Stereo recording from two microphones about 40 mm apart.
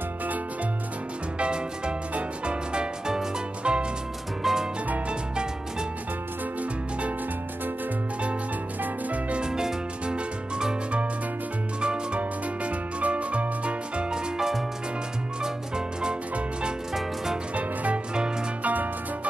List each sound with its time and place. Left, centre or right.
1.4 s music: right
4.4 s music: centre
5.3 s music: right
6.6 s music: right
8.8 s music: right
9.4 s music: centre
11.8 s music: right
12.2 s music: right
14.1 s music: centre
17.6 s music: right